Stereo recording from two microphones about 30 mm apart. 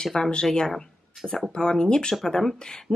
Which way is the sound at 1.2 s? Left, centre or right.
Centre.